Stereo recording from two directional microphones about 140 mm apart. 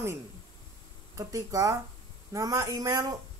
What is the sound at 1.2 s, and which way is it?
Speech, 25° right (ahead or behind).